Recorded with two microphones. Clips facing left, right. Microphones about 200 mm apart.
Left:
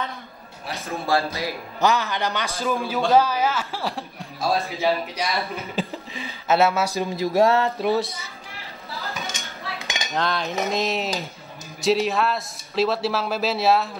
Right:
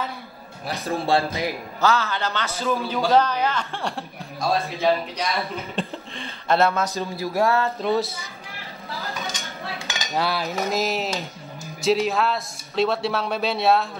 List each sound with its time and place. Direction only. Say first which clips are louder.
0.8 s speech: right 2 dB; 30° right (ahead or behind)
1.8 s speech: left 1 dB; 15° left (ahead or behind)
2.8 s a man's voice: left 1 dB; centre (ahead or behind); by 7.9 s 15° left (ahead or behind)
9.7 s cutlery: left 1 dB; 10° right (ahead or behind)
11.8 s a man's voice: even; centre (ahead or behind)